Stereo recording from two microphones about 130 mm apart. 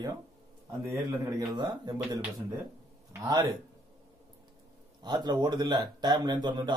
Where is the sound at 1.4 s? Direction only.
35° right (ahead or behind).